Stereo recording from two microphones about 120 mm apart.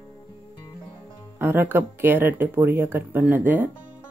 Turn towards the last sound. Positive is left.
turn(degrees=-15)  # may be behind; listen again after turning